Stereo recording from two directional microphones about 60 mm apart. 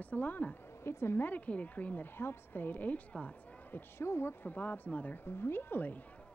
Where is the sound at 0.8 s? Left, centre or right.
Left.